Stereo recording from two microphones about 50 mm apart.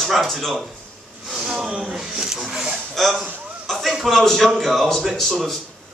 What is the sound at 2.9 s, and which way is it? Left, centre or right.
A man's voice, centre.